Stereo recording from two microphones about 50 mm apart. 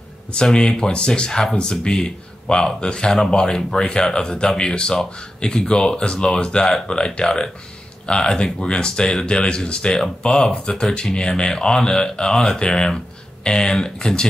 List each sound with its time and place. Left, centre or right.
0.3 s speech: centre